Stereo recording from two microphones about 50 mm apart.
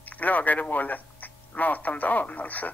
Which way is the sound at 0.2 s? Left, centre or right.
Left.